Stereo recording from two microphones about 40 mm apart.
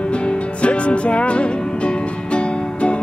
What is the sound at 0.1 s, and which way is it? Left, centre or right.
Music, left.